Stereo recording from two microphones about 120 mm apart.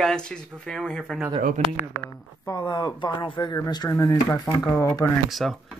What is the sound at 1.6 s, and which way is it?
Speech, 75° right (ahead or behind).